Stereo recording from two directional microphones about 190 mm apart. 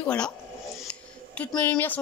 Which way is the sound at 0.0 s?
5° left (ahead or behind).